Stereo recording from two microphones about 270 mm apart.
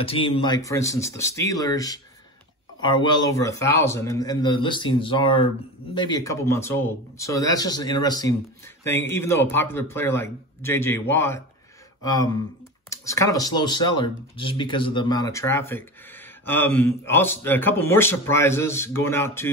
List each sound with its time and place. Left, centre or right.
0.0 s speech: left